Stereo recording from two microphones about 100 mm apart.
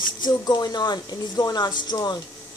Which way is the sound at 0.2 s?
40° left (ahead or behind).